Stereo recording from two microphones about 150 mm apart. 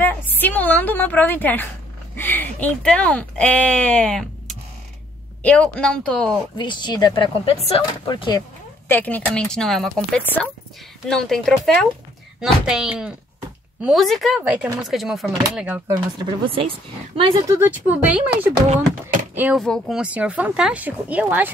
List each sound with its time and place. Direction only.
0.0 s a woman's voice: 10° left (ahead or behind)
6.5 s speech: 30° left (ahead or behind)
8.8 s speech: 10° left (ahead or behind); by 15.8 s 5° right (ahead or behind)
15.9 s speech: 30° right (ahead or behind)
17.5 s speech: 15° right (ahead or behind)
19.6 s speech: 5° left (ahead or behind)
20.0 s speech: 10° right (ahead or behind)